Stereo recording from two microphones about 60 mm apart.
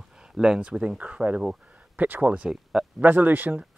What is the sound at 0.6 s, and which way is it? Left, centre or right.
Speech, centre.